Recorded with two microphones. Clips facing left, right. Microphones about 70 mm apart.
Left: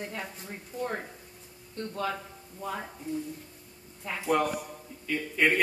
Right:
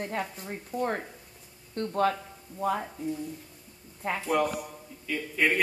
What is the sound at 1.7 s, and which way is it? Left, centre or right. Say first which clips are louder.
Speech: right 6 dB; right.